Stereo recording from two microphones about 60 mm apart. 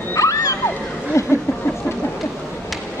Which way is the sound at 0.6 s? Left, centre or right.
Left.